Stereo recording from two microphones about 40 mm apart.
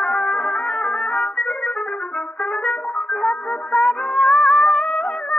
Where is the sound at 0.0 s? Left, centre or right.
Left.